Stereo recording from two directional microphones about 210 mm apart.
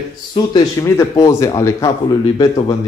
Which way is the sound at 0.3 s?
20° left (ahead or behind).